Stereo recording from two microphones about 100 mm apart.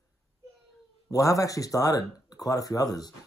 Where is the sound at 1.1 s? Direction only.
35° left (ahead or behind).